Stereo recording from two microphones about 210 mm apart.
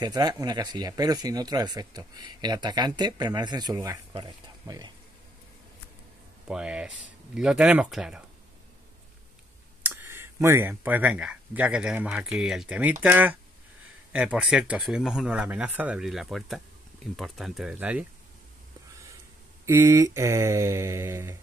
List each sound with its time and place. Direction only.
0.0 s speech: 20° right (ahead or behind)
6.4 s speech: 5° right (ahead or behind)
9.8 s speech: 10° right (ahead or behind)
13.0 s mantra: 10° right (ahead or behind)
14.1 s speech: 5° right (ahead or behind)
19.6 s mantra: 10° right (ahead or behind)